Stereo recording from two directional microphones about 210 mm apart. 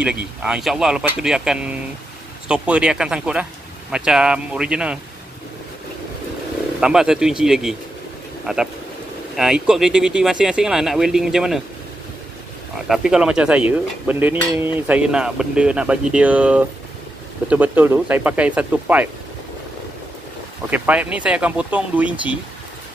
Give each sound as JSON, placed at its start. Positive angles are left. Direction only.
{"t": 0.0, "sound": "speech", "side_deg": -5}
{"t": 6.8, "sound": "speech", "side_deg": -5}
{"t": 12.8, "sound": "speech", "side_deg": 0}
{"t": 20.7, "sound": "speech", "side_deg": -5}